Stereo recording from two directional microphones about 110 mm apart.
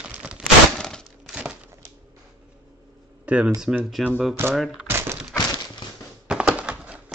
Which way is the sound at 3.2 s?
10° right (ahead or behind).